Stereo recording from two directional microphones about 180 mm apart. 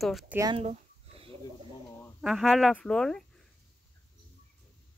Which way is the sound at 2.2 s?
Centre (ahead or behind).